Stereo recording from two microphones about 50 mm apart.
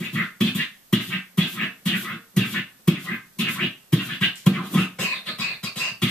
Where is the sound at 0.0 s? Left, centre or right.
Centre.